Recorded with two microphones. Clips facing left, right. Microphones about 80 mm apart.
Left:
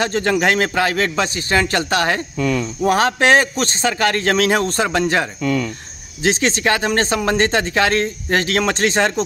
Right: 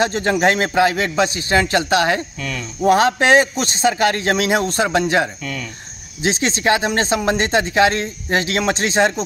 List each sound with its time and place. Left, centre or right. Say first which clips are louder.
0.2 s speech: even; right